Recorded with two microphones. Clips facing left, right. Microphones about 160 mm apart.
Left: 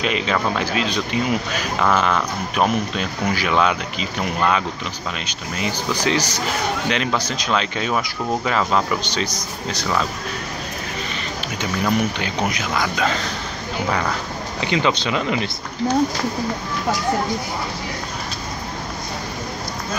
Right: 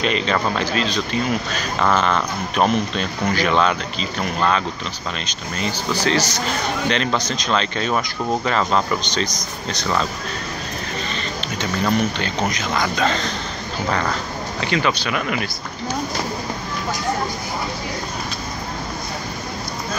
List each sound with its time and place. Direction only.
0.0 s speech: 10° left (ahead or behind)
11.4 s speech: 10° left (ahead or behind)
14.6 s speech: 20° left (ahead or behind)